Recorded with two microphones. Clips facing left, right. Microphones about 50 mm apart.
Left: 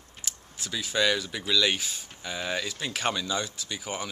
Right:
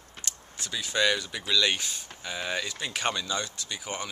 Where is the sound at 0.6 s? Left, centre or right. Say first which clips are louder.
Even; centre.